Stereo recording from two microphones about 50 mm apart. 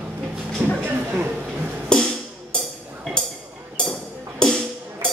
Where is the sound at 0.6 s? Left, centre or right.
Right.